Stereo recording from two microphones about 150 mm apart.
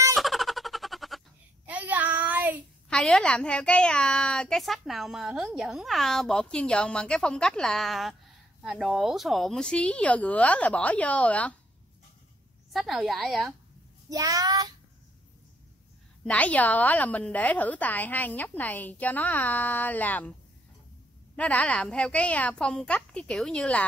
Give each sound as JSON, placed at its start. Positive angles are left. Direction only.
{"t": 0.1, "sound": "a sound", "side_deg": 0}
{"t": 1.7, "sound": "child singing", "side_deg": -10}
{"t": 2.9, "sound": "a woman's voice", "side_deg": 5}
{"t": 12.7, "sound": "a woman's voice", "side_deg": 0}
{"t": 14.0, "sound": "a child's voice", "side_deg": -25}
{"t": 16.3, "sound": "a woman's voice", "side_deg": 10}
{"t": 21.4, "sound": "a woman's voice", "side_deg": 10}